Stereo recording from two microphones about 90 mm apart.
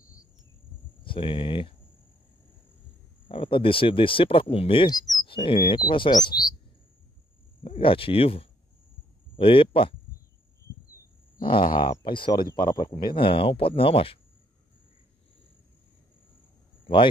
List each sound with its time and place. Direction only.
1.0 s speech: 70° left (ahead or behind)
3.3 s speech: 75° left (ahead or behind)
5.2 s speech: 70° left (ahead or behind)
6.1 s speech: 50° left (ahead or behind)
7.6 s speech: 85° left
11.4 s speech: 70° left (ahead or behind); by 14.2 s 90° left
16.8 s speech: 70° left (ahead or behind)